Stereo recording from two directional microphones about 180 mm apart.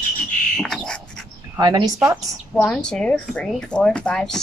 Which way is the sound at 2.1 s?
Centre (ahead or behind).